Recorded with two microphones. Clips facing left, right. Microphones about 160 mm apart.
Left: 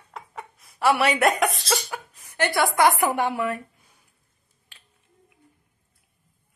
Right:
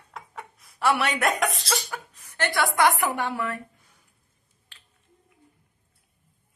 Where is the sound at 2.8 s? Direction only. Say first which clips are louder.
Left 2 dB; 40° left (ahead or behind).